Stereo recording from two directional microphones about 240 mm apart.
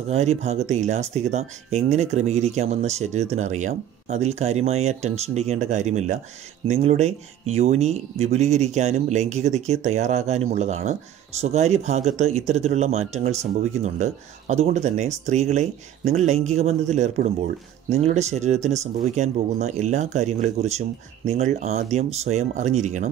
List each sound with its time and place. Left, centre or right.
0.1 s speech: right